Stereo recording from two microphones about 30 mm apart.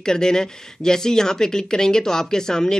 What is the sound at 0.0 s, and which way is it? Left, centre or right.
Speech, left.